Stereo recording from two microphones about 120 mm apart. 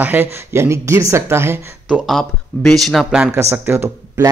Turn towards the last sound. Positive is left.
turn(degrees=-20)  # may be behind; listen again after turning